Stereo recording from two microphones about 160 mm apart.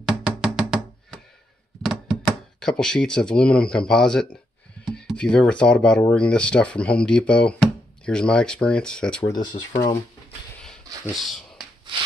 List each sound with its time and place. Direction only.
0.0 s music: 5° right (ahead or behind)
2.2 s speech: 5° left (ahead or behind)
9.3 s speech: 25° left (ahead or behind)
11.1 s speech: centre (ahead or behind)